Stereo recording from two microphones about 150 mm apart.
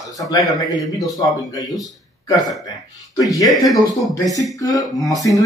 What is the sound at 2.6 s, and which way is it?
Speech, 25° left (ahead or behind).